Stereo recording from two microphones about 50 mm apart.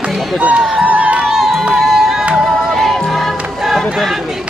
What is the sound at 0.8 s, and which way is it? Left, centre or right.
Crowd, right.